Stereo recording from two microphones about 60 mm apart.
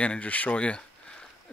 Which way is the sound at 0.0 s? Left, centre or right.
Left.